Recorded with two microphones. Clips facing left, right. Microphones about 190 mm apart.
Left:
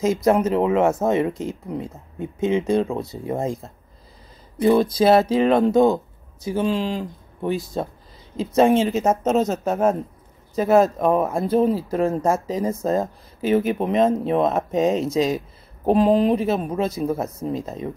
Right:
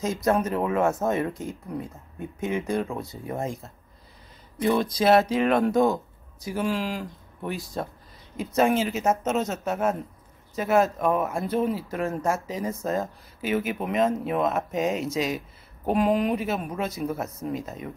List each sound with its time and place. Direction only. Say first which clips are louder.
0.2 s speech: left 3 dB; 20° left (ahead or behind)